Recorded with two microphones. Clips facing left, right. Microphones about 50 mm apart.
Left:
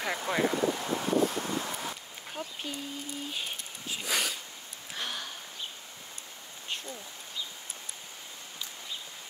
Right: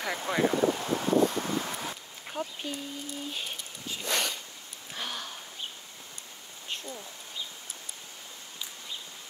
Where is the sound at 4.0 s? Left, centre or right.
Centre.